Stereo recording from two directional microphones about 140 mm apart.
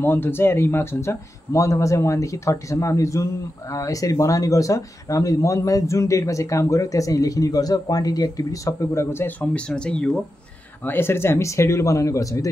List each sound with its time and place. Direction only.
0.0 s speech: 15° left (ahead or behind)